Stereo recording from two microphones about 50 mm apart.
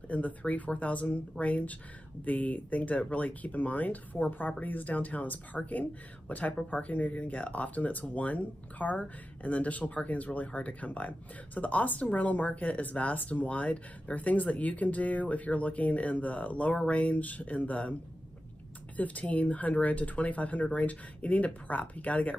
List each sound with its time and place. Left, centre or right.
0.1 s speech: left
18.9 s speech: left